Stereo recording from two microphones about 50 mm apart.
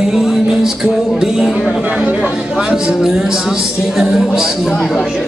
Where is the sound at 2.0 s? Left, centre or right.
Centre.